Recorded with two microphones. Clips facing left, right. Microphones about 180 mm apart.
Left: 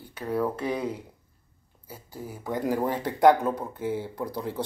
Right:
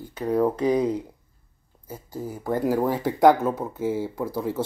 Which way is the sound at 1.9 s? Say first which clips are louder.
Right 6 dB; 15° right (ahead or behind).